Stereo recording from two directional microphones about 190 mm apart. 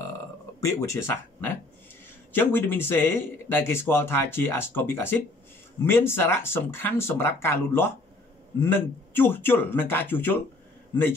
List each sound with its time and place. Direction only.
0.6 s a man's voice: 15° left (ahead or behind)